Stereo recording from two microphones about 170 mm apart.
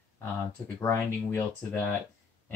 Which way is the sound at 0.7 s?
15° left (ahead or behind).